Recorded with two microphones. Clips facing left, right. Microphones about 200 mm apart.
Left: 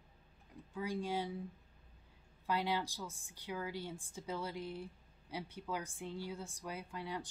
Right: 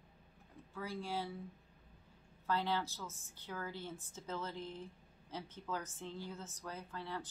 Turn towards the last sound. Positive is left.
turn(degrees=15)  # may be behind; listen again after turning